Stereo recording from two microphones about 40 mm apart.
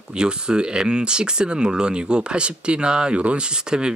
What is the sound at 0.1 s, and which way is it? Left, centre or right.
Speech, right.